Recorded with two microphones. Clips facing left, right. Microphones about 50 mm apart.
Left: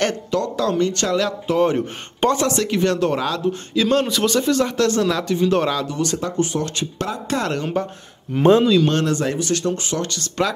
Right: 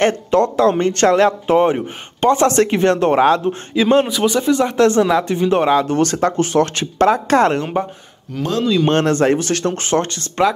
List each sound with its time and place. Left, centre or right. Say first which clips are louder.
0.0 s speech: right 6 dB; right
5.9 s speech: right 7 dB; right
7.8 s speech: right 3 dB; centre
8.4 s speech: left 7 dB; left
9.0 s speech: right 6 dB; right
10.0 s speech: right 1 dB; right